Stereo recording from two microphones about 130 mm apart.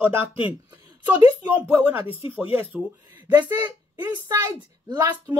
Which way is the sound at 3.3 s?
30° right (ahead or behind).